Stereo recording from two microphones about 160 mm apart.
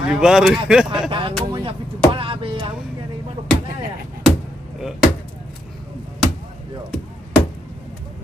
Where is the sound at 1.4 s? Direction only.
30° right (ahead or behind).